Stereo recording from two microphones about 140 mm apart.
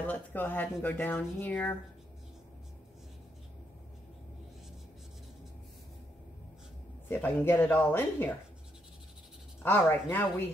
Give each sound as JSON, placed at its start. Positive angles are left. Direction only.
{"t": 0.0, "sound": "speech", "side_deg": 15}
{"t": 7.1, "sound": "speech", "side_deg": 15}
{"t": 9.6, "sound": "speech", "side_deg": 15}